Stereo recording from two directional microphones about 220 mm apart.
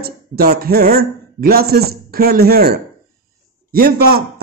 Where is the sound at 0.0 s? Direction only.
45° right (ahead or behind).